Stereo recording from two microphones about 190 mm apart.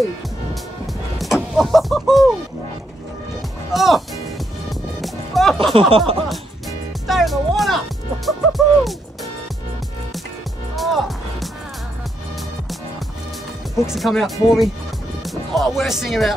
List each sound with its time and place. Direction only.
1.1 s music: centre (ahead or behind)
3.7 s speech: centre (ahead or behind)
4.6 s music: centre (ahead or behind)
5.8 s music: 30° right (ahead or behind)
7.1 s music: centre (ahead or behind)
10.8 s music: centre (ahead or behind)
13.8 s speech: centre (ahead or behind)